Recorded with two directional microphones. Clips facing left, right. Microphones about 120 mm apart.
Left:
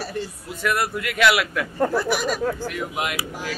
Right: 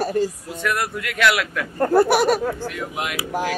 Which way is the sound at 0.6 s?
5° left (ahead or behind).